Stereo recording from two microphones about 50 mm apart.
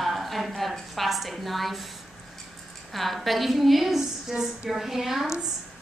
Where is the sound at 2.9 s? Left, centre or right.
Centre.